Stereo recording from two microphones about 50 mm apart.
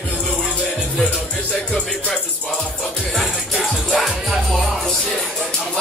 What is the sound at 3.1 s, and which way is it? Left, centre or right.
Music, centre.